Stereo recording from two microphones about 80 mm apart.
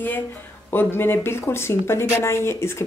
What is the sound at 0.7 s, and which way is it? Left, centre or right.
Speech, left.